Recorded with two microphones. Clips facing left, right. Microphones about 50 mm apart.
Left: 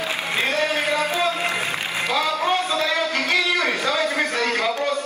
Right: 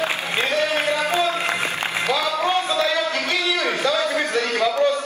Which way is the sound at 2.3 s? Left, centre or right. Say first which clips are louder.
Right 1 dB; right.